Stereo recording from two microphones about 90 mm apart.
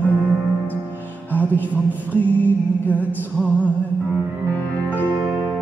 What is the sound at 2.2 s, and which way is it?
Music, 20° left (ahead or behind).